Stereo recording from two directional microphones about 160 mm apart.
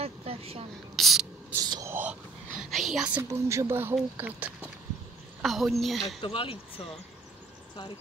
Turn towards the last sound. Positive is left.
turn(degrees=35)  # may be behind; listen again after turning